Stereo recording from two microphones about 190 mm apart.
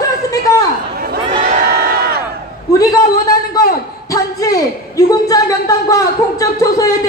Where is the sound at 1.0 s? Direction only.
50° right (ahead or behind).